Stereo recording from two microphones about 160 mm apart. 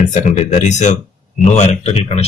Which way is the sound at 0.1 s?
45° left (ahead or behind).